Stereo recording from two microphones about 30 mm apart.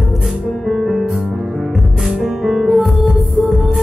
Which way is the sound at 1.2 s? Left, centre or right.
Right.